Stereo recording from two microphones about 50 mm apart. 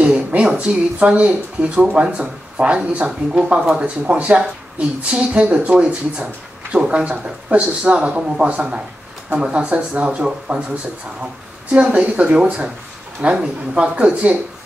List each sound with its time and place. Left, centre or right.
0.4 s a sound: centre
0.9 s speech: right
11.7 s speech: right